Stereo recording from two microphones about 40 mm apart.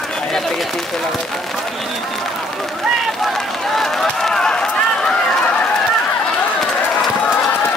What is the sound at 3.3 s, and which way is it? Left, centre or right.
Run, centre.